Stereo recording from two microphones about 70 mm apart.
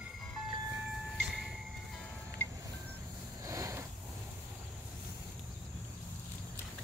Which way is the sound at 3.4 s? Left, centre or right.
Right.